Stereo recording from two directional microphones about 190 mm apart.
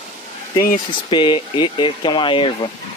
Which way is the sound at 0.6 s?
25° left (ahead or behind).